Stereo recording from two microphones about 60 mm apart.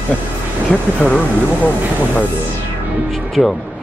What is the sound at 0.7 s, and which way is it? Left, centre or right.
Speech, centre.